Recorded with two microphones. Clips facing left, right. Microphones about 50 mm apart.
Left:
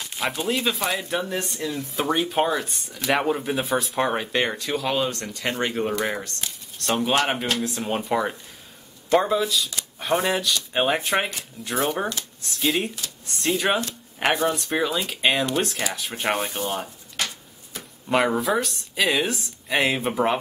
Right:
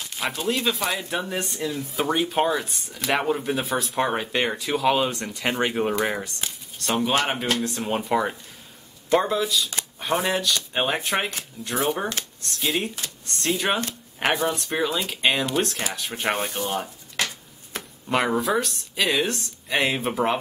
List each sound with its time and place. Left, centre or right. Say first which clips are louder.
0.0 s speech: left 1 dB; centre
18.0 s speech: left 1 dB; centre